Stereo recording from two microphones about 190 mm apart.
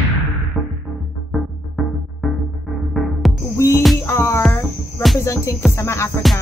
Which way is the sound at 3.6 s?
15° left (ahead or behind).